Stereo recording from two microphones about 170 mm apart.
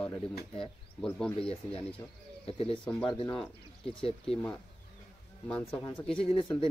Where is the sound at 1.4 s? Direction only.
35° left (ahead or behind).